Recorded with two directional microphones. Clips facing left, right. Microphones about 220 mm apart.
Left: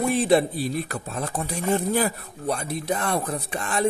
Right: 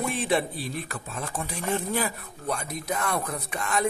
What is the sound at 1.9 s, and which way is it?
Speech, 35° left (ahead or behind).